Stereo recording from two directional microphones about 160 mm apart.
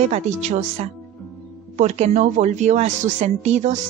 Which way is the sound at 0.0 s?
45° right (ahead or behind).